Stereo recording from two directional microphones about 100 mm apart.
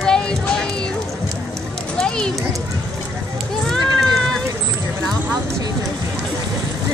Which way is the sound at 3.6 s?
5° left (ahead or behind).